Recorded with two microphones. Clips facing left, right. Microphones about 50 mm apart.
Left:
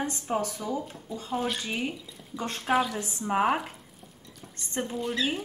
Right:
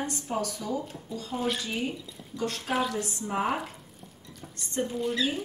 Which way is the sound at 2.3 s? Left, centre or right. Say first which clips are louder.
Right 2 dB; left.